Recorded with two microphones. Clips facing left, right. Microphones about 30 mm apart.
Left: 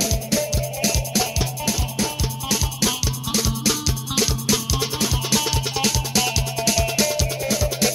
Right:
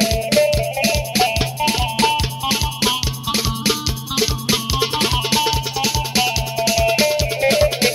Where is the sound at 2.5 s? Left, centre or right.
Right.